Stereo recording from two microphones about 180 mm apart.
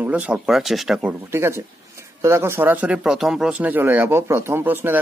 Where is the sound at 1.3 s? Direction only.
15° right (ahead or behind).